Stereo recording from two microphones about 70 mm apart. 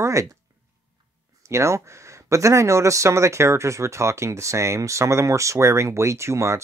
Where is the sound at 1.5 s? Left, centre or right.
Right.